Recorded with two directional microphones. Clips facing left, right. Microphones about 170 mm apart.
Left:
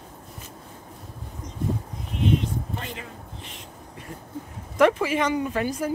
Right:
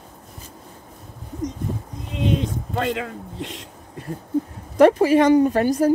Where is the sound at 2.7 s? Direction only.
90° right.